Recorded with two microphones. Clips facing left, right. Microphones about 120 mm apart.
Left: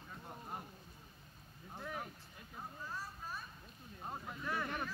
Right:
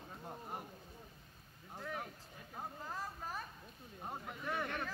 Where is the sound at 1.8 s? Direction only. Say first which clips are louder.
Right 1 dB; 10° left (ahead or behind).